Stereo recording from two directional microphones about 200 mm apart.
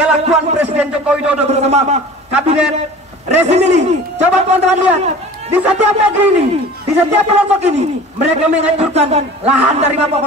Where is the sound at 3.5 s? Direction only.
35° right (ahead or behind).